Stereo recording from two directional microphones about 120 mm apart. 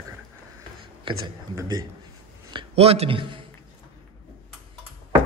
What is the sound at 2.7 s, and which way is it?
Speech, 55° right (ahead or behind).